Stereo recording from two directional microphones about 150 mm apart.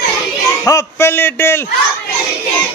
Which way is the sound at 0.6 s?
20° left (ahead or behind).